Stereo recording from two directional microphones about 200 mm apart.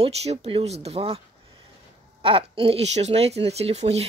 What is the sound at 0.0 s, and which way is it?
Speech, 30° right (ahead or behind).